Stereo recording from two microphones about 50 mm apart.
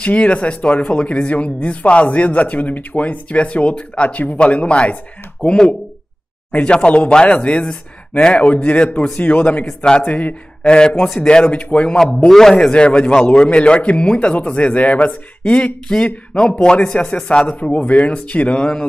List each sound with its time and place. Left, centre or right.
0.0 s a man's voice: left
12.3 s a man's voice: centre
12.5 s speech: left